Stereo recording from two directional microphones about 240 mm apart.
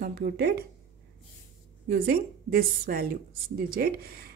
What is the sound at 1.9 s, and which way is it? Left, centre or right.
A woman's voice, right.